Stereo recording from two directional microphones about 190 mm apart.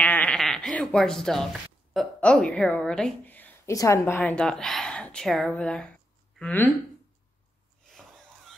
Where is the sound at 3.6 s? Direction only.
15° left (ahead or behind).